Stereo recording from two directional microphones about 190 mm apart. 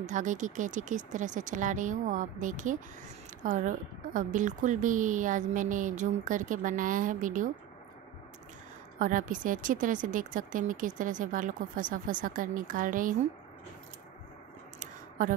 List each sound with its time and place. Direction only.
0.0 s a woman's voice: 40° right (ahead or behind)
8.9 s a woman's voice: 45° right (ahead or behind)
14.8 s a sound: 45° right (ahead or behind)